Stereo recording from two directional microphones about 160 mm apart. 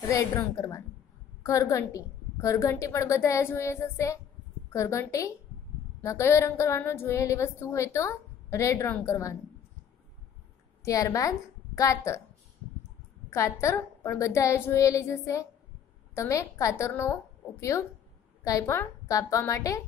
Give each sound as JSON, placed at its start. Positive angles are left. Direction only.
{"t": 0.1, "sound": "a woman's voice", "side_deg": 20}
{"t": 10.8, "sound": "a woman's voice", "side_deg": 20}
{"t": 13.3, "sound": "a woman's voice", "side_deg": 20}